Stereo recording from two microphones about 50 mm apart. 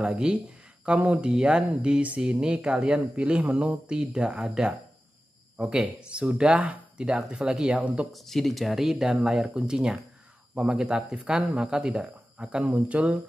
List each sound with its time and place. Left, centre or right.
0.0 s speech: right
1.2 s speech: centre
3.9 s speech: centre
7.0 s speech: centre
7.7 s speech: right
8.1 s speech: centre
12.7 s speech: right